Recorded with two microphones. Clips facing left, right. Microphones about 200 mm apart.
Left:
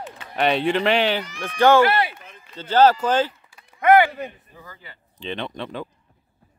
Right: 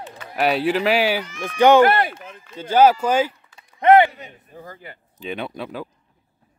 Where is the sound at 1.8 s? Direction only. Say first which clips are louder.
Right 3 dB; 50° right (ahead or behind).